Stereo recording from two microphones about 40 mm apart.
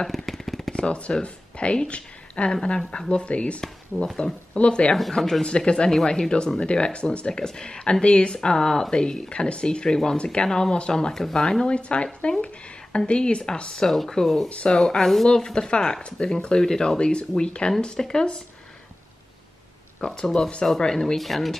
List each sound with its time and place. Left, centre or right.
0.1 s a sound: centre
0.7 s speech: left
3.9 s speech: centre
4.6 s speech: left
5.2 s speech: centre
8.9 s speech: left
10.1 s speech: left
10.5 s speech: centre
11.6 s speech: left
13.8 s speech: centre
14.5 s speech: left
14.8 s speech: centre
20.0 s speech: centre